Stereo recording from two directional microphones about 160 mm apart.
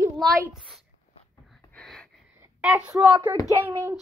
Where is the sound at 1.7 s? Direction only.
5° left (ahead or behind).